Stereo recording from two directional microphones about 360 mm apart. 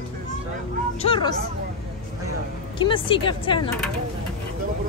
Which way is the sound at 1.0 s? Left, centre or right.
Centre.